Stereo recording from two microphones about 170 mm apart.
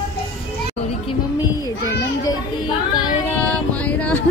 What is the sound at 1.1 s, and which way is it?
Music, 25° left (ahead or behind).